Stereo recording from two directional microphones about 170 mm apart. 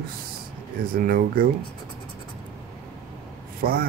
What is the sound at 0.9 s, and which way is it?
Speech, 55° right (ahead or behind).